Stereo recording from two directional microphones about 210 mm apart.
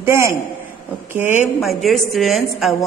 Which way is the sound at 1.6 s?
Centre (ahead or behind).